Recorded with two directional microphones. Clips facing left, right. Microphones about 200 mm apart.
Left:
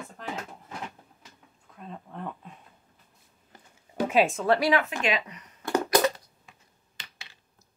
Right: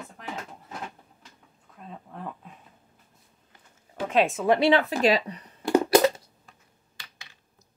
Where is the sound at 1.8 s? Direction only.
Centre (ahead or behind).